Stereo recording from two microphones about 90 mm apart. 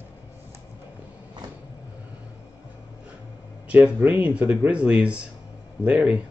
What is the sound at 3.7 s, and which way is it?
Speech, 15° right (ahead or behind).